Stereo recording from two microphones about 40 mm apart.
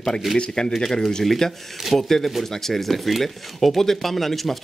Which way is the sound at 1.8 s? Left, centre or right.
Centre.